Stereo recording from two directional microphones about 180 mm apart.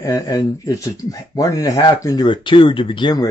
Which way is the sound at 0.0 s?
20° left (ahead or behind).